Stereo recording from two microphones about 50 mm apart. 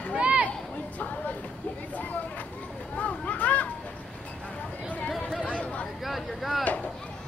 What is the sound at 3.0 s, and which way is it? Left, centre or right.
Speech, left.